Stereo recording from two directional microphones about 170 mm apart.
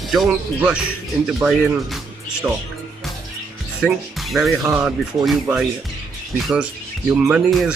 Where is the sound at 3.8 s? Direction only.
Centre (ahead or behind).